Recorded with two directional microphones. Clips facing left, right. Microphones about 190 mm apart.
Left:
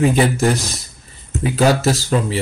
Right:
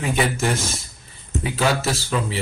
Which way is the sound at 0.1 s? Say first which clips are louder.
Left 6 dB; 35° left (ahead or behind).